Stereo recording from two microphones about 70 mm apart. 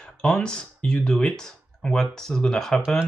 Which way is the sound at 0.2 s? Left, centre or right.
Centre.